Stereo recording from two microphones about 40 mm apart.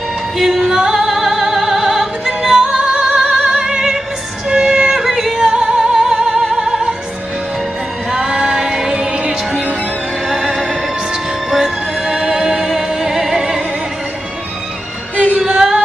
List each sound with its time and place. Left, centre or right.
0.4 s music: centre
5.0 s yodeling: centre
5.8 s music: centre
8.1 s female singing: centre
8.5 s music: centre
10.2 s music: centre
15.3 s female singing: centre